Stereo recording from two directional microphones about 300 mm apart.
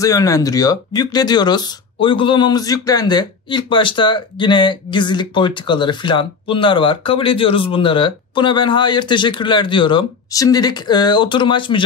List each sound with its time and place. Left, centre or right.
0.0 s speech: centre